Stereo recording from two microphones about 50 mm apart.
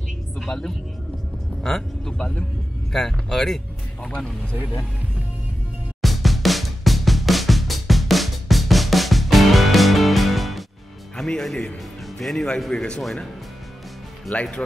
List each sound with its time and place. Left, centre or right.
0.5 s speech: centre
4.1 s speech: centre
6.0 s drum: centre
11.1 s speech: centre
14.3 s speech: centre